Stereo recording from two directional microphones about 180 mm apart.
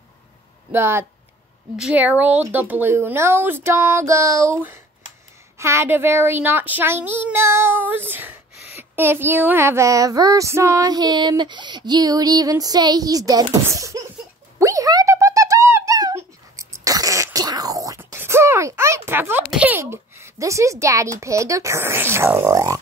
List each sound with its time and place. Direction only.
0.7 s a child's voice: 15° right (ahead or behind)
14.6 s a sound: 20° right (ahead or behind)
21.2 s a child's voice: 15° right (ahead or behind)